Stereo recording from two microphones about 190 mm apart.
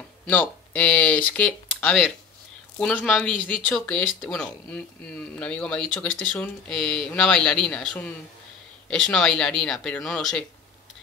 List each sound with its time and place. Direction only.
0.3 s speech: 5° left (ahead or behind)